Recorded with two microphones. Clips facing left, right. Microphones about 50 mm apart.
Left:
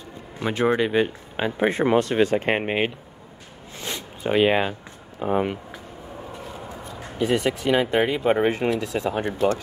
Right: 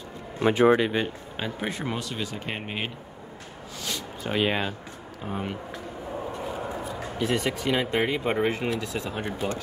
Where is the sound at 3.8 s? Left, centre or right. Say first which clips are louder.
Left 5 dB; left.